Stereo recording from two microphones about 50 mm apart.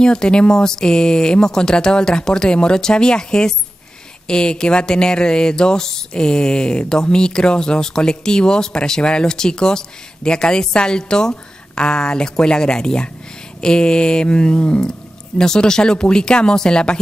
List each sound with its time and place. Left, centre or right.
0.0 s speech: centre
14.9 s speech: centre